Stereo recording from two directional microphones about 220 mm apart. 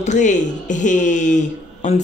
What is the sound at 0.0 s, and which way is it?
Speech, 35° left (ahead or behind).